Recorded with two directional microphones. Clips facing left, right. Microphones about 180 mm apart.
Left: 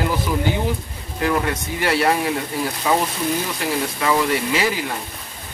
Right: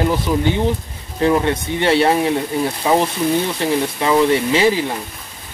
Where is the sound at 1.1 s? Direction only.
25° right (ahead or behind).